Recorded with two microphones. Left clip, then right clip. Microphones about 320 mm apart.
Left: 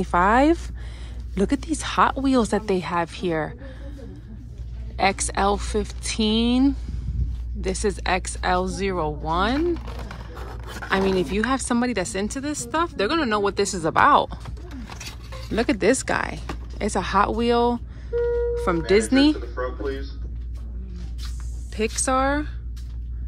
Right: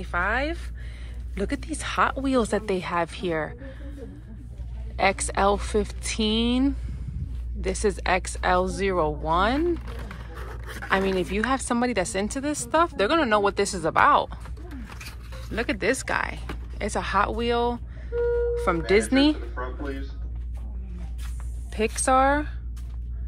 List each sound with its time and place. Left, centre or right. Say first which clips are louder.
0.0 s speech: left 8 dB; centre
4.9 s speech: left 1 dB; centre
9.8 s a sound: left 3 dB; left
10.9 s speech: left 2 dB; centre
14.9 s a sound: left 6 dB; left
15.5 s speech: left 5 dB; centre
18.5 s music: left 1 dB; centre
18.9 s speech: left 3 dB; centre
21.7 s speech: right 1 dB; centre